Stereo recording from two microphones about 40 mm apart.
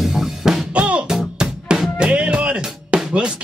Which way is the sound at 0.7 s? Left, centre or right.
Right.